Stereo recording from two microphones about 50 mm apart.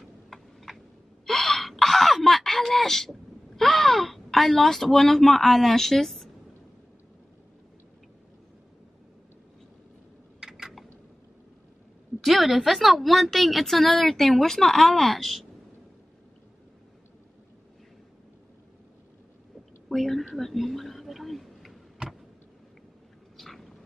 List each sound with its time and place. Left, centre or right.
0.3 s tick-tock: centre
1.2 s gasp: centre
10.4 s typing: centre
12.2 s a woman's voice: centre
19.9 s a woman's voice: centre
20.3 s a sound: centre
22.0 s vehicle: centre
23.3 s a sound: centre